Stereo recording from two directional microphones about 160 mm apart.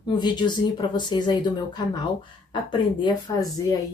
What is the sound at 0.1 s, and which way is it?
Speech, 30° left (ahead or behind).